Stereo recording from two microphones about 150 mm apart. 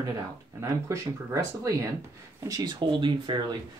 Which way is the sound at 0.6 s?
20° right (ahead or behind).